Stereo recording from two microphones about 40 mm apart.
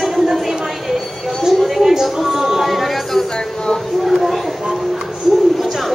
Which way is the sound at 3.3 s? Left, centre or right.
Centre.